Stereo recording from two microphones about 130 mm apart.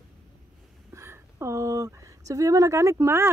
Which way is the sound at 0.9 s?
20° right (ahead or behind).